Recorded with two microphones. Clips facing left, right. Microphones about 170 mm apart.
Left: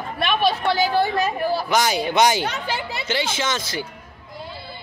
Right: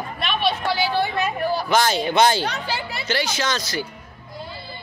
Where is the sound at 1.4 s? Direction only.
5° left (ahead or behind); by 3.9 s 20° left (ahead or behind).